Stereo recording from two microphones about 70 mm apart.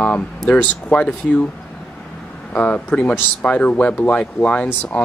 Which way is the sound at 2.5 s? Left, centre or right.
Left.